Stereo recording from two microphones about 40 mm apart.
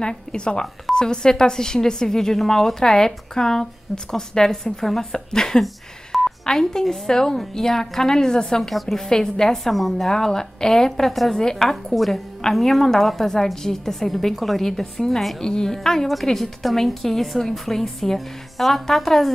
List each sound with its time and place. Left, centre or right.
0.0 s speech: left
9.8 s a woman's voice: centre
10.0 s speech: centre
11.7 s a woman's voice: centre
15.4 s a woman's voice: centre